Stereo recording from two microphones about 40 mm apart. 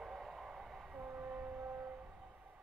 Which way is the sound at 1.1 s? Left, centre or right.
Right.